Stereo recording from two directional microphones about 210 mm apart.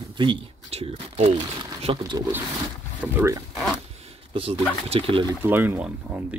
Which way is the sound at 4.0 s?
25° right (ahead or behind).